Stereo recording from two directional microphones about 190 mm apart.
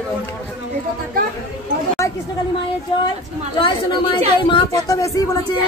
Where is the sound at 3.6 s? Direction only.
25° left (ahead or behind).